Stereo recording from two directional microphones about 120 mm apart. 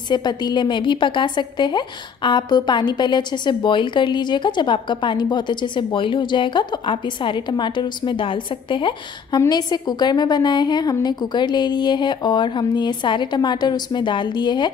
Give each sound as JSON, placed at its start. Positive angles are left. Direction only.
{"t": 0.1, "sound": "a woman's voice", "side_deg": 35}